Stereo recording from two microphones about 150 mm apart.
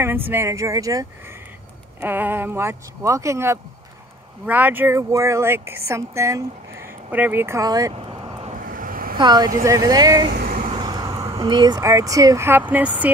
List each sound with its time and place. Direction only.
0.0 s speech: 15° right (ahead or behind)
2.0 s speech: 10° right (ahead or behind)
7.9 s vehicle: 40° right (ahead or behind)
8.5 s vehicle: 65° right (ahead or behind)
9.2 s speech: 30° right (ahead or behind)
10.3 s vehicle: 85° right
10.7 s vehicle: 25° right (ahead or behind)
11.3 s speech: 30° right (ahead or behind); by 13.1 s 10° right (ahead or behind)